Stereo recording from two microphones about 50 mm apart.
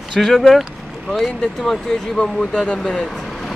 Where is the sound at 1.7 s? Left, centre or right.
Centre.